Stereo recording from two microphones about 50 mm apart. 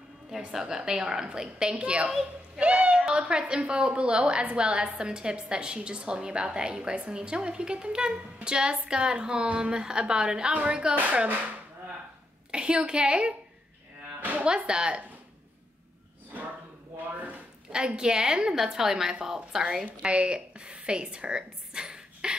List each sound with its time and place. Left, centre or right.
0.4 s a woman's voice: centre
2.0 s a child's voice: centre
2.6 s a sound: right
3.1 s a woman's voice: centre
12.4 s a woman's voice: right
14.4 s a woman's voice: centre
17.6 s a woman's voice: centre